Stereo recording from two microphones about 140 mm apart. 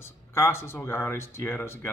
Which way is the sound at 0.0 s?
15° left (ahead or behind).